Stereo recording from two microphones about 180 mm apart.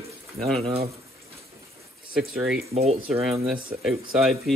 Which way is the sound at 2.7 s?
35° right (ahead or behind).